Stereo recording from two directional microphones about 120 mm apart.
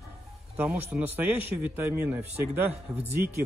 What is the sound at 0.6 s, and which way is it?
A man's voice, 10° right (ahead or behind).